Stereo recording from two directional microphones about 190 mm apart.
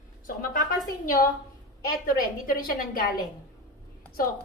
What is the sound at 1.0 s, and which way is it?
A woman's voice, 45° left (ahead or behind).